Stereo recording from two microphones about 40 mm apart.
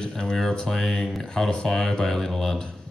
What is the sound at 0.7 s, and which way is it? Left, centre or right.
Speech, centre.